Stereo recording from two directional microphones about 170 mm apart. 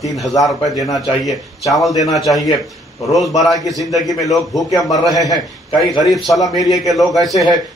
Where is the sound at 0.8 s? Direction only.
20° left (ahead or behind).